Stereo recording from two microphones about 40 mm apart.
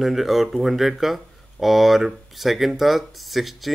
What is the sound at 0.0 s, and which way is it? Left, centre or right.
Speech, centre.